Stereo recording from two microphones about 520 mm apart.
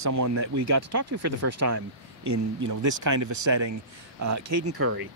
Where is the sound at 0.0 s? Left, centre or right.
Right.